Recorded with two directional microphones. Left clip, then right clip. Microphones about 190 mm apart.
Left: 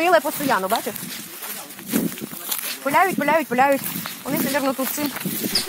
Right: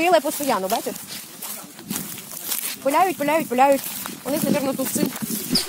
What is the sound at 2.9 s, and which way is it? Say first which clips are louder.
Speech: left 2 dB; 10° left (ahead or behind).